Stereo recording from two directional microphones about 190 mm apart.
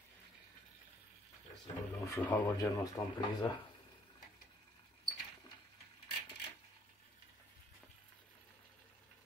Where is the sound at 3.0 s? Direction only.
25° left (ahead or behind).